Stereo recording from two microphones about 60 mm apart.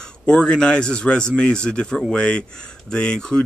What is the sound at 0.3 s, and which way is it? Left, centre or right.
Speech, centre.